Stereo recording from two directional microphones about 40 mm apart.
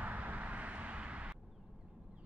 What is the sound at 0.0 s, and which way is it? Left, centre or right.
Vehicle, right.